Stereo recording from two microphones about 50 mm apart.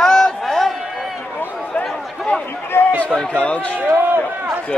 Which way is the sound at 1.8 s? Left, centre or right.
Centre.